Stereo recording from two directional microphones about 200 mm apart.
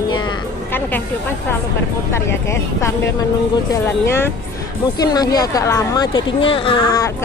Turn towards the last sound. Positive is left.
turn(degrees=25)  # may be behind; listen again after turning